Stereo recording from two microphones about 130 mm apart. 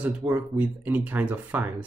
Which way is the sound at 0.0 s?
15° right (ahead or behind).